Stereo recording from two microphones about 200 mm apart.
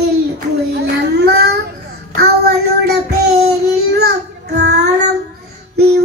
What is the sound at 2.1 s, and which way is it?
Child singing, 55° right (ahead or behind).